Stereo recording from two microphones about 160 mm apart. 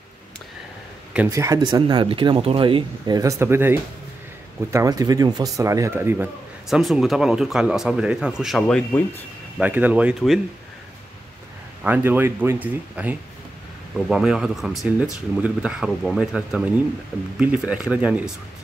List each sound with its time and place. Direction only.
1.3 s speech: 20° right (ahead or behind); by 9.2 s 10° left (ahead or behind)
9.6 s speech: 10° right (ahead or behind)
11.8 s speech: 10° right (ahead or behind)